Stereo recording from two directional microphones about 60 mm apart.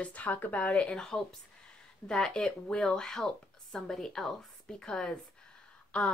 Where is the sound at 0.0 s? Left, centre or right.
Left.